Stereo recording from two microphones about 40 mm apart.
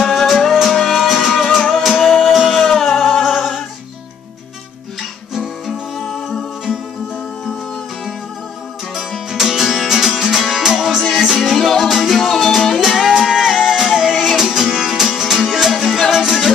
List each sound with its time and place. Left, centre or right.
0.0 s music: centre
8.9 s music: centre
10.7 s music: centre
11.1 s music: centre